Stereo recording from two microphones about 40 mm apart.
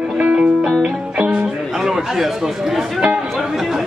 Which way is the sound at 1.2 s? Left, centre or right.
Right.